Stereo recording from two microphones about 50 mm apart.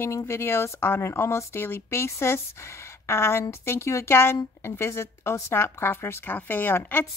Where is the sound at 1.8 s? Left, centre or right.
Left.